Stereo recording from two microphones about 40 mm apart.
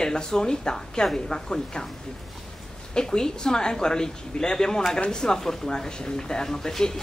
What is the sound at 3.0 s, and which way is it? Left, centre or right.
Speech, centre.